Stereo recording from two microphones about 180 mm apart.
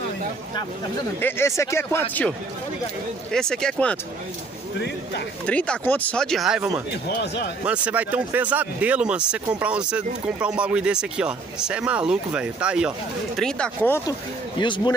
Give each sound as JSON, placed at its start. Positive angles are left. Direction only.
{"t": 1.2, "sound": "speech", "side_deg": 15}
{"t": 5.5, "sound": "speech", "side_deg": 5}
{"t": 7.2, "sound": "speech", "side_deg": 65}
{"t": 7.6, "sound": "speech", "side_deg": -5}
{"t": 13.4, "sound": "speech", "side_deg": 5}
{"t": 14.6, "sound": "speech", "side_deg": 25}